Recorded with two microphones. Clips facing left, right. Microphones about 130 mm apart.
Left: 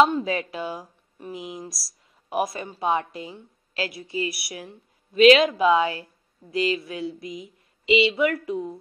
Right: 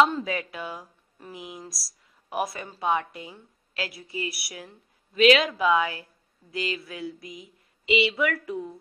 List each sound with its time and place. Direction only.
0.0 s speech: 25° left (ahead or behind)